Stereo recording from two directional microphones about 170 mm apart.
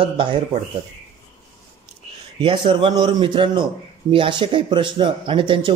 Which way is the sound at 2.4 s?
30° right (ahead or behind).